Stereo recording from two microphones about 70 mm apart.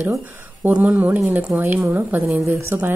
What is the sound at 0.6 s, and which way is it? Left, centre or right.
A woman's voice, right.